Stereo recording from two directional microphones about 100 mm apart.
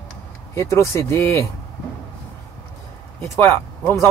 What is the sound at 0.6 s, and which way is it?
Speech, 30° left (ahead or behind).